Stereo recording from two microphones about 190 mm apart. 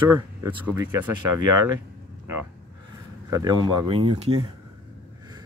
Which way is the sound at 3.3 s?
20° right (ahead or behind).